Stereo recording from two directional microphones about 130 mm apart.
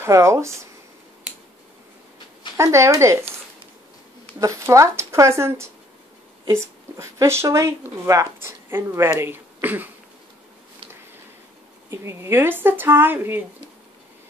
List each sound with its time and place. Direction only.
0.0 s speech: 20° right (ahead or behind)
2.5 s speech: 20° right (ahead or behind)
4.4 s speech: 25° right (ahead or behind)
11.9 s a woman's voice: 20° right (ahead or behind)